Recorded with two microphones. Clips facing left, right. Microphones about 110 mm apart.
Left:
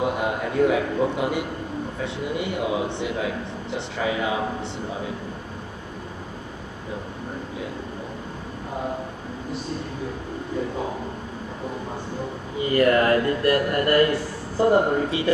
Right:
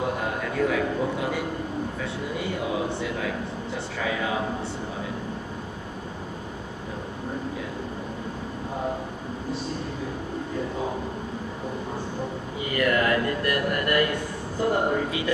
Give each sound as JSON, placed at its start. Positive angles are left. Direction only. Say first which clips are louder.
{"t": 0.0, "sound": "a man's voice", "louder": "left 3 dB", "side_deg": 20}
{"t": 12.7, "sound": "a man's voice", "louder": "left 5 dB", "side_deg": 35}